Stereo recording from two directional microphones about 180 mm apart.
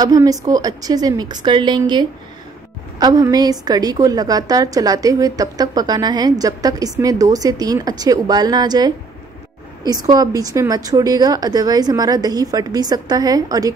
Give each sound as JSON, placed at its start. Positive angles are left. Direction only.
{"t": 0.0, "sound": "a woman's voice", "side_deg": -20}